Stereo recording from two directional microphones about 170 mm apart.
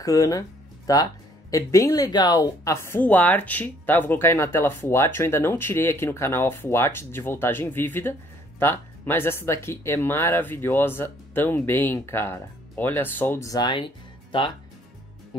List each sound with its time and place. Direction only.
0.0 s speech: 20° left (ahead or behind)